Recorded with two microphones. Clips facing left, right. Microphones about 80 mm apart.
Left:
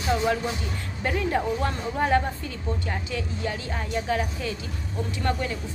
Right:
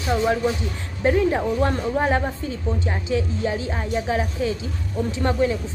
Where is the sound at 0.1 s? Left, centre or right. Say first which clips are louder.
Right 4 dB; right.